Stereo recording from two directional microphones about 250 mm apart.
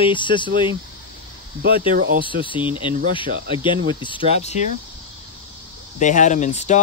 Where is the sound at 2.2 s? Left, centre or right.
Centre.